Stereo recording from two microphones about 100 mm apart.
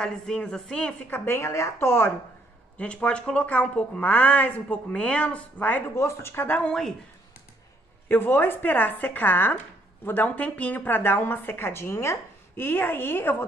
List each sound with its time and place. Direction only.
0.0 s a woman's voice: 10° left (ahead or behind)
1.2 s a woman's voice: 25° left (ahead or behind)
2.8 s a woman's voice: 10° left (ahead or behind)
5.9 s a woman's voice: 25° left (ahead or behind)
8.1 s a woman's voice: 20° left (ahead or behind)